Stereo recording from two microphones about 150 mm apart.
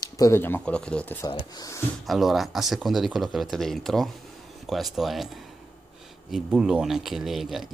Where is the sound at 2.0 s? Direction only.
Centre (ahead or behind).